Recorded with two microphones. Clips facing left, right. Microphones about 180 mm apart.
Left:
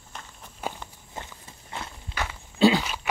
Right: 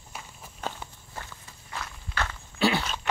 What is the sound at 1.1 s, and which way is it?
Walk, 20° left (ahead or behind).